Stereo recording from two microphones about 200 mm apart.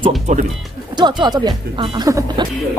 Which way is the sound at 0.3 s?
35° right (ahead or behind).